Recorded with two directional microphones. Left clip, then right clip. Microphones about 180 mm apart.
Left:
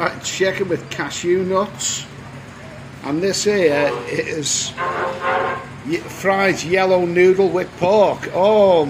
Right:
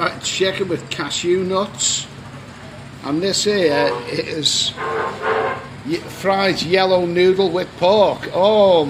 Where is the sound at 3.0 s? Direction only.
Centre (ahead or behind).